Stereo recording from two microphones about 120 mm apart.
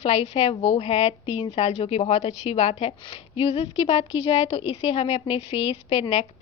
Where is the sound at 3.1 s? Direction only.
50° left (ahead or behind).